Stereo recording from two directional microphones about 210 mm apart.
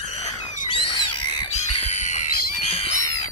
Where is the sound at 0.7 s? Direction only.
25° left (ahead or behind).